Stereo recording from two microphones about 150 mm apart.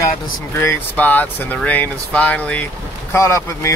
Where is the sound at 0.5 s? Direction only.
10° left (ahead or behind).